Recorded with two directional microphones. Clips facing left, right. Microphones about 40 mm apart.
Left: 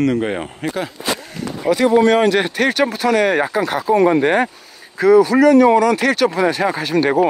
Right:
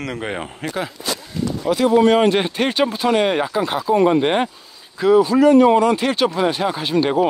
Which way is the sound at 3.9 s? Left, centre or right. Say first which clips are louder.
Left 2 dB; left.